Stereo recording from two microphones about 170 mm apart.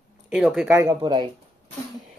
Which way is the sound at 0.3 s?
5° right (ahead or behind).